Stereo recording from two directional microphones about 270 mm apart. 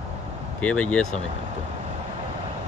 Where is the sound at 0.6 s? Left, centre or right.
Centre.